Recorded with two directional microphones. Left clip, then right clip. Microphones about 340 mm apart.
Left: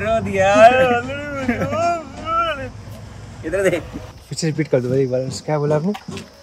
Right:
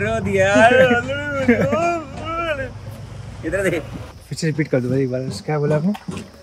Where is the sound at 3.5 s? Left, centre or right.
Centre.